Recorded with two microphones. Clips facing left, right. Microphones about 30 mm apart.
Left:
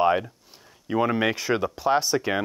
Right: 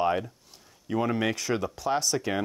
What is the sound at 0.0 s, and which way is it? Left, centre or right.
Speech, left.